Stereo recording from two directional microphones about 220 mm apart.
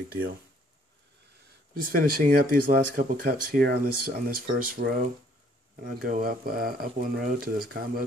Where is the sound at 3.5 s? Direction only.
45° right (ahead or behind).